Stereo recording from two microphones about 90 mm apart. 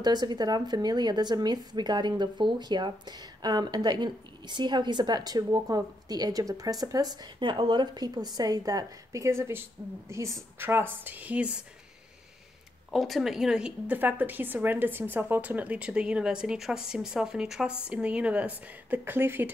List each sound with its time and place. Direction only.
0.0 s speech: 50° right (ahead or behind); by 11.6 s 15° right (ahead or behind)
12.9 s speech: centre (ahead or behind)
13.9 s a woman's voice: 20° right (ahead or behind)